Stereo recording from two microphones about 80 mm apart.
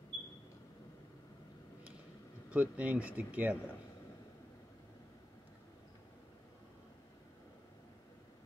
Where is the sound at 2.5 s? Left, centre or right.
Centre.